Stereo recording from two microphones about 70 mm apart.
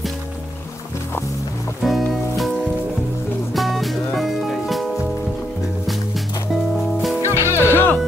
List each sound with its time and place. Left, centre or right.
1.8 s music: centre
3.5 s music: centre
7.2 s music: left